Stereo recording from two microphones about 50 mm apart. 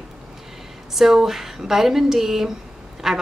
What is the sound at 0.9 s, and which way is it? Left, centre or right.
Speech, centre.